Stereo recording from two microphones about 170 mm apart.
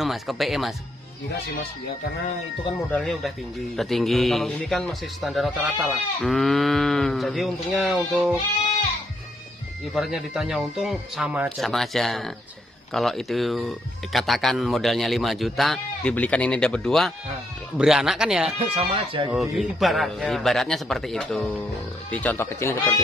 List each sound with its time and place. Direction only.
0.0 s a man's voice: centre (ahead or behind)
2.9 s a man's voice: centre (ahead or behind)
9.9 s a man's voice: 5° right (ahead or behind)
18.8 s speech: 30° right (ahead or behind)
19.2 s a man's voice: centre (ahead or behind); by 22.9 s 15° left (ahead or behind)